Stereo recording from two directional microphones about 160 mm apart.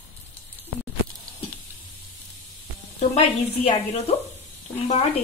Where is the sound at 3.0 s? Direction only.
40° left (ahead or behind).